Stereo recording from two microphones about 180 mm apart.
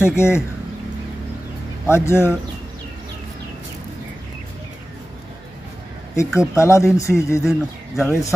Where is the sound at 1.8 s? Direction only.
15° left (ahead or behind).